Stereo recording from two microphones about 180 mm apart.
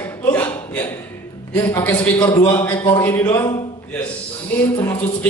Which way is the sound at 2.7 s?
25° left (ahead or behind).